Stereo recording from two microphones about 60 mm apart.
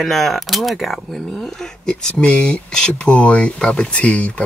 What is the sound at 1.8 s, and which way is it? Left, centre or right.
Speech, centre.